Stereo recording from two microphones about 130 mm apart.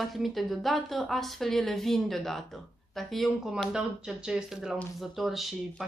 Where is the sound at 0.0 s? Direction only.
Centre (ahead or behind).